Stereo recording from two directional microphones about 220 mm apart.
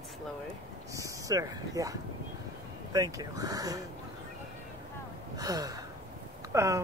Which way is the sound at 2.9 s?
15° right (ahead or behind).